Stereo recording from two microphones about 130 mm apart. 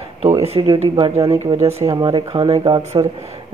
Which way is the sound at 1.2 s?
55° right (ahead or behind).